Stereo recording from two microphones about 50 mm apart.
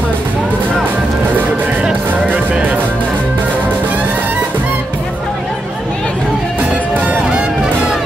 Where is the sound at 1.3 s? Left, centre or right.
Right.